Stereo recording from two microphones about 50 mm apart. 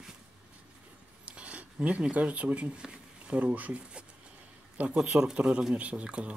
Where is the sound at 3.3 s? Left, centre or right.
Right.